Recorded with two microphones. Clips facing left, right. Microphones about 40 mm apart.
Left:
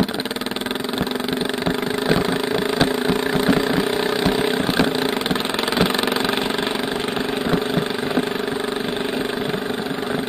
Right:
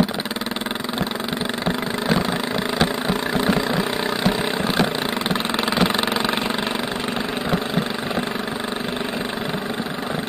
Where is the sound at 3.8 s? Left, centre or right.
Centre.